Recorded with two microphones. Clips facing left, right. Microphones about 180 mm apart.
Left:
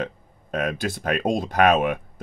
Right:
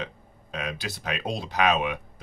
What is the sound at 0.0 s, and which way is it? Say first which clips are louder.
Speech: left 6 dB; 50° left (ahead or behind).